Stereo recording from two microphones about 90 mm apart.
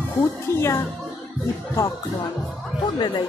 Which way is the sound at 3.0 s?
55° left (ahead or behind).